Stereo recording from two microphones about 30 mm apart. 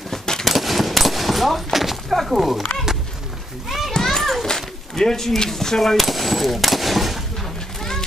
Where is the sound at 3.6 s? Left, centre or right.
Centre.